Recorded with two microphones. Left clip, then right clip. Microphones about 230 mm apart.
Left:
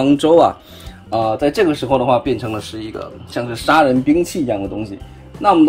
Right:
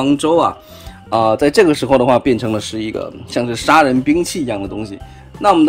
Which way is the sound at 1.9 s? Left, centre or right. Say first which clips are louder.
Right 3 dB; right.